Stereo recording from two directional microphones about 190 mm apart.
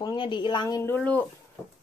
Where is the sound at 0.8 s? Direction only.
5° left (ahead or behind).